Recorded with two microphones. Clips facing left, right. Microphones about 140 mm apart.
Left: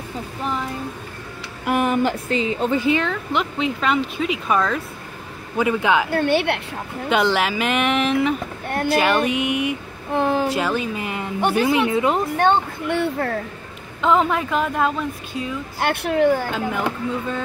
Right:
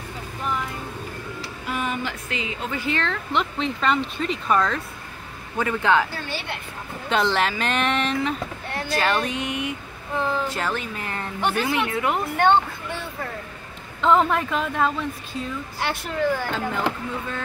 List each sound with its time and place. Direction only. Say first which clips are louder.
1.7 s speech: left 9 dB; 55° left (ahead or behind)
2.2 s a woman's voice: left 9 dB; 35° left (ahead or behind)
2.8 s speech: left 6 dB; 10° left (ahead or behind)
6.0 s a woman's voice: left 13 dB; 60° left (ahead or behind)
7.1 s speech: left 3 dB; 5° left (ahead or behind)
8.6 s a sound: left 11 dB; 50° left (ahead or behind)
8.9 s speech: left 4 dB; 10° left (ahead or behind)
10.1 s a sound: left 5 dB; 70° left (ahead or behind)
10.5 s speech: left 6 dB; 15° left (ahead or behind)
12.8 s a woman's voice: left 10 dB; 65° left (ahead or behind)
14.0 s speech: left 1 dB; 5° left (ahead or behind)
15.8 s a woman's voice: left 7 dB; 65° left (ahead or behind)
16.3 s speech: left 5 dB; 15° left (ahead or behind)